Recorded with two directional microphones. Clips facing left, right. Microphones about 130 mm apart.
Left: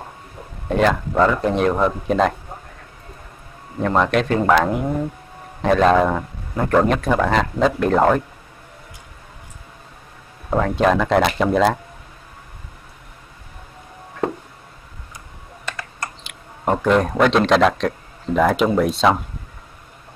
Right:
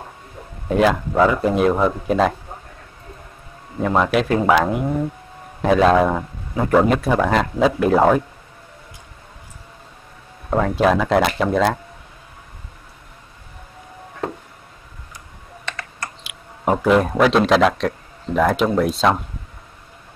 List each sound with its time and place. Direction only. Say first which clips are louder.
0.7 s a man's voice: right 1 dB; 5° right (ahead or behind)
3.8 s a man's voice: even; 5° right (ahead or behind)
10.6 s a man's voice: even; centre (ahead or behind)
16.3 s speech: right 1 dB; 5° right (ahead or behind)